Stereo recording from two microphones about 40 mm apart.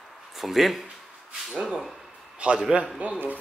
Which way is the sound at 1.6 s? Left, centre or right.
Centre.